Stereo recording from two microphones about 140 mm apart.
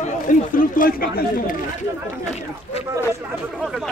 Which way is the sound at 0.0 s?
70° left (ahead or behind).